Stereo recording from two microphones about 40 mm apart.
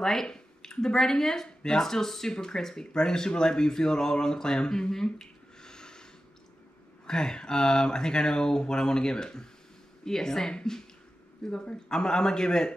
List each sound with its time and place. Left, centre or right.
0.0 s speech: centre
7.1 s speech: centre